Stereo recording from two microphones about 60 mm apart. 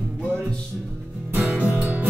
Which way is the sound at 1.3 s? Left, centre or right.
Right.